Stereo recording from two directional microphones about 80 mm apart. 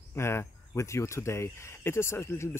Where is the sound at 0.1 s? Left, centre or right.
Left.